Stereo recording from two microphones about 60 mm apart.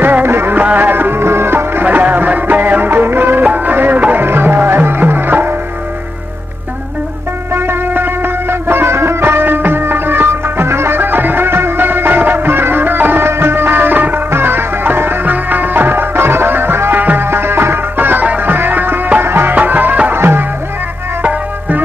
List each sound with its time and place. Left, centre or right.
0.0 s music: right
7.5 s music: right
19.5 s music: right